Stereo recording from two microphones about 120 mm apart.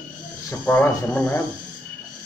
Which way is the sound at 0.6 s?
15° left (ahead or behind).